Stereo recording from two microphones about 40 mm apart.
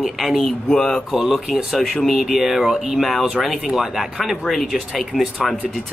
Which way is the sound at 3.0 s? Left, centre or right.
Centre.